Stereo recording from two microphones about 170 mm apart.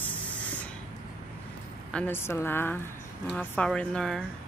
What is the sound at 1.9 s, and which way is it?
A woman's voice, 10° left (ahead or behind).